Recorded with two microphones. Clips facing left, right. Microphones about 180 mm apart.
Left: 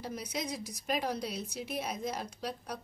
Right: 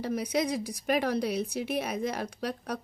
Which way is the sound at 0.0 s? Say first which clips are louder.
Right 9 dB; 65° right (ahead or behind).